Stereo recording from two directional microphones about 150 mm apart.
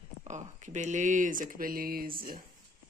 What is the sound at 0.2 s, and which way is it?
Speech, 50° right (ahead or behind).